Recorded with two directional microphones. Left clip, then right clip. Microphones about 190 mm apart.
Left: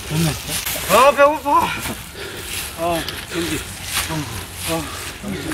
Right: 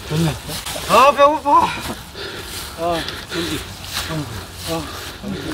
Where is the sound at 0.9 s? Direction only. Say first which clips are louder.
Right 1 dB; 30° left (ahead or behind).